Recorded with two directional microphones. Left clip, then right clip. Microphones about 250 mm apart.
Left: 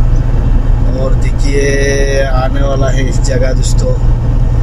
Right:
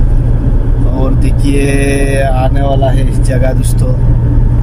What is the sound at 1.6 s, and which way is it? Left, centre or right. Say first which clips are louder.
Mantra: left 2 dB; centre.